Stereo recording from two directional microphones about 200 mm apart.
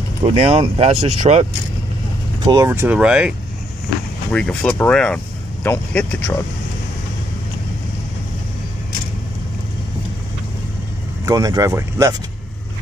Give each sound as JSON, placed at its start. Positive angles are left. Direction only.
{"t": 0.2, "sound": "speech", "side_deg": -30}
{"t": 2.4, "sound": "speech", "side_deg": -15}
{"t": 4.3, "sound": "speech", "side_deg": 5}
{"t": 11.2, "sound": "speech", "side_deg": -15}